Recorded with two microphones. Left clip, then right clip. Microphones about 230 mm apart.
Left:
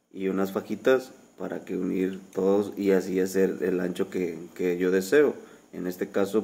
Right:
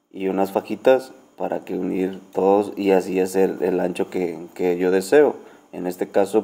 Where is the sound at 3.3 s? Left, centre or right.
Right.